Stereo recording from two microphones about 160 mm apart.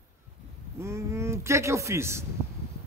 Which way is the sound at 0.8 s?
15° right (ahead or behind).